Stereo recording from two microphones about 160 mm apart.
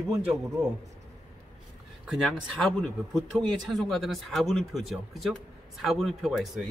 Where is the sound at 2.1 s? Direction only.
Centre (ahead or behind).